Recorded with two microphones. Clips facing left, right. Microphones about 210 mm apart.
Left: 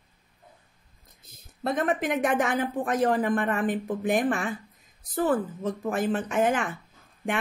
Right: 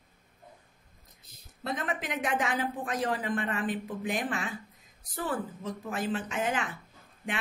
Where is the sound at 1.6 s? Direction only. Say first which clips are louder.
Left 8 dB; 50° left (ahead or behind).